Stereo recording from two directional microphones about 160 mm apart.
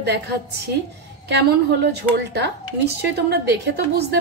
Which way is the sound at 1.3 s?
90° right.